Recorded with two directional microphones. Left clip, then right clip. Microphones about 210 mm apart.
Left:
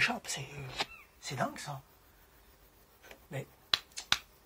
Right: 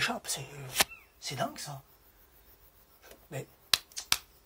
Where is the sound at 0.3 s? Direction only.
10° right (ahead or behind).